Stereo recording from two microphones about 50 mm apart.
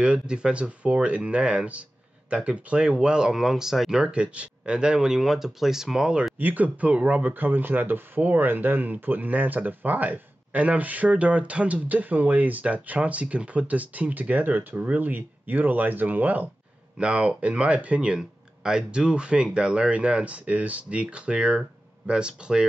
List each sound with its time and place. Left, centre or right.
0.0 s speech: right
6.3 s speech: right
17.0 s speech: right